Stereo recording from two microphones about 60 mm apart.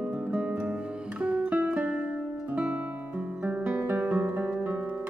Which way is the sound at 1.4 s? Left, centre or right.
Right.